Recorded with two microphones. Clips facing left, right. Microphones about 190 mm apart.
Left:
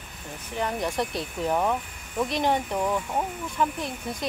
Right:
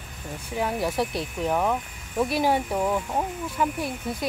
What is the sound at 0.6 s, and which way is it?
Speech, 5° right (ahead or behind).